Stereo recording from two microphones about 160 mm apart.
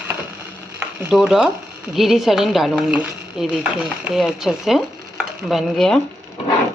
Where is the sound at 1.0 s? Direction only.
5° right (ahead or behind).